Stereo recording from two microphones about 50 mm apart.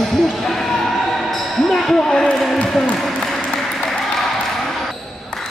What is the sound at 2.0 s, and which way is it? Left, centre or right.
Speech, centre.